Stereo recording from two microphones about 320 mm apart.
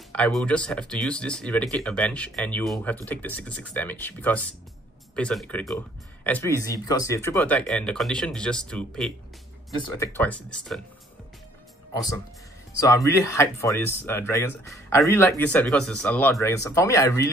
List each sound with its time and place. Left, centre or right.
0.1 s speech: centre
12.8 s speech: centre